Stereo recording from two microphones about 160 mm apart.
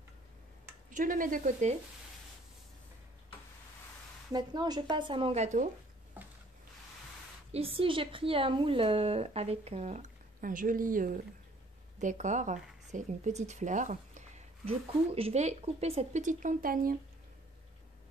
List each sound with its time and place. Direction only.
0.8 s speech: 55° right (ahead or behind)
4.3 s speech: 25° right (ahead or behind); by 5.7 s 45° right (ahead or behind)
7.5 s speech: 35° right (ahead or behind); by 16.9 s 60° right (ahead or behind)